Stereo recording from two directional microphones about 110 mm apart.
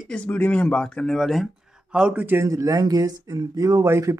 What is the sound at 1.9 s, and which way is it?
Speech, 10° right (ahead or behind).